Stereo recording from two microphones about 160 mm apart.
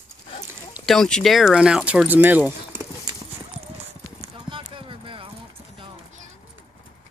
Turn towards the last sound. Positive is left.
turn(degrees=-40)  # may be behind; listen again after turning